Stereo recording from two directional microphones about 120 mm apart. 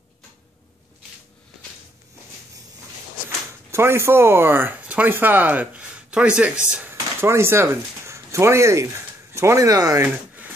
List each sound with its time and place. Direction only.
3.3 s speech: 20° right (ahead or behind)
6.9 s speech: 20° right (ahead or behind)
10.0 s a sound: 15° right (ahead or behind)